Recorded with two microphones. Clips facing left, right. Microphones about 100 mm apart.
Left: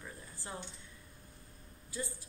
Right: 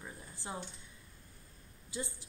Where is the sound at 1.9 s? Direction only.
20° right (ahead or behind).